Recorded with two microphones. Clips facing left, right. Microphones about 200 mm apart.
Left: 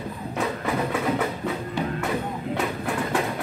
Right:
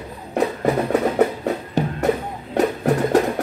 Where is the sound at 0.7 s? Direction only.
40° right (ahead or behind).